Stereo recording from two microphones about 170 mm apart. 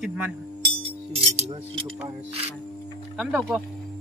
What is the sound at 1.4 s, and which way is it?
Speech, 35° right (ahead or behind).